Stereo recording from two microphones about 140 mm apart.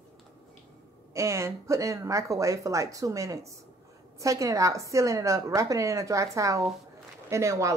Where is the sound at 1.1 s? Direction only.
20° right (ahead or behind).